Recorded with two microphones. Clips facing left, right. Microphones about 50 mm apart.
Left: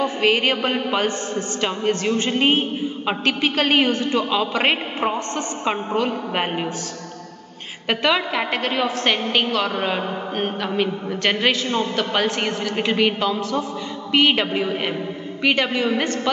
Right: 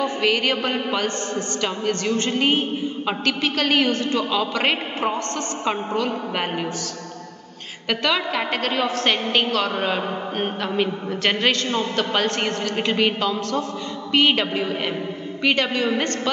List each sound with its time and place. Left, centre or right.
0.0 s a man's voice: left
7.9 s a woman's voice: centre